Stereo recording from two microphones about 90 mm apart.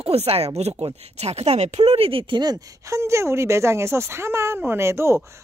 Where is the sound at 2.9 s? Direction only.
30° right (ahead or behind).